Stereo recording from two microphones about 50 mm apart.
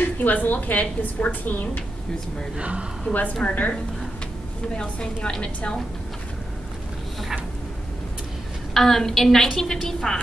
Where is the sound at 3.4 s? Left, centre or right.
Left.